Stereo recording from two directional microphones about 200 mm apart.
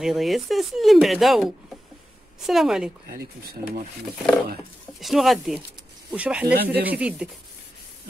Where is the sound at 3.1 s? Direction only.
40° right (ahead or behind).